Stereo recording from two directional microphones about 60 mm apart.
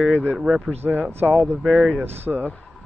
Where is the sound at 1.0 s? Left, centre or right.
Right.